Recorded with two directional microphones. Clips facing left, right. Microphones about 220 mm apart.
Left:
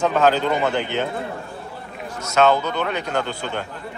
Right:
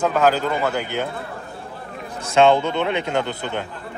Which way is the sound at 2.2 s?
30° right (ahead or behind).